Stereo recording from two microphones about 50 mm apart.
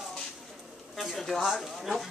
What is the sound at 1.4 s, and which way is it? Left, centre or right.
Speech, centre.